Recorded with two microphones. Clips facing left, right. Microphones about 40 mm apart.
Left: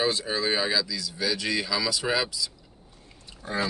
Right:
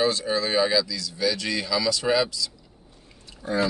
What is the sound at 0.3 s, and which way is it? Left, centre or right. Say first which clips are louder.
Speech: right 4 dB; centre.